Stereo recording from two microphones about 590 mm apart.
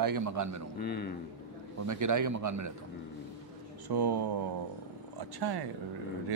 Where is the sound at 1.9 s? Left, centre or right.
Right.